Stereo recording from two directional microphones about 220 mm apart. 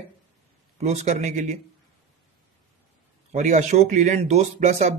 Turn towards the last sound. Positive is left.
turn(degrees=-30)  # may be behind; listen again after turning